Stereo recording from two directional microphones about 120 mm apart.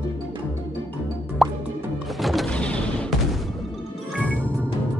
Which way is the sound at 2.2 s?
Centre (ahead or behind).